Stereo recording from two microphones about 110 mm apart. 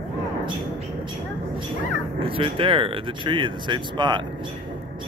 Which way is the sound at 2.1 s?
55° right (ahead or behind).